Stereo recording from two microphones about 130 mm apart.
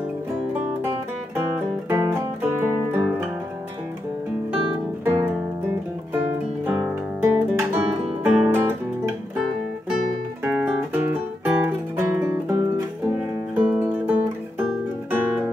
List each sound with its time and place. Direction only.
1.9 s guitar: 15° right (ahead or behind)
5.0 s music: 15° right (ahead or behind)
10.4 s music: 10° right (ahead or behind)